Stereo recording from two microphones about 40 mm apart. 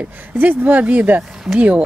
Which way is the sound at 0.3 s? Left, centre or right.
Right.